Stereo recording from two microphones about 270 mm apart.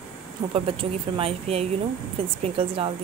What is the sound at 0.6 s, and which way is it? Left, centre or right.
Speech, centre.